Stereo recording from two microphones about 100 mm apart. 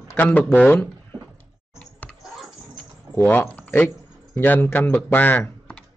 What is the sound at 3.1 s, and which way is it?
Speech, 20° left (ahead or behind).